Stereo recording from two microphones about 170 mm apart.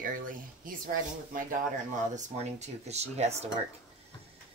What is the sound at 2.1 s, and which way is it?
Speech, 40° right (ahead or behind).